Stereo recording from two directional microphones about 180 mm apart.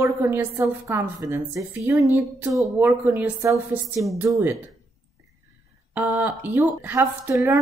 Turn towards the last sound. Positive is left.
turn(degrees=-15)  # may be behind; listen again after turning